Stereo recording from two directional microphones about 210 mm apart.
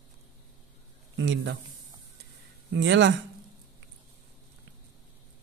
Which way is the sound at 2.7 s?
55° right (ahead or behind).